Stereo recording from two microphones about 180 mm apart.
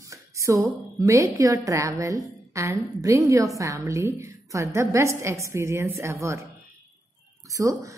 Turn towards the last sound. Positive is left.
turn(degrees=-20)  # may be behind; listen again after turning